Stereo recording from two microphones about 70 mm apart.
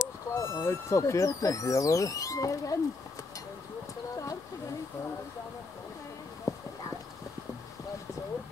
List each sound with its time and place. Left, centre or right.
0.3 s speech: left
6.5 s clip-clop: left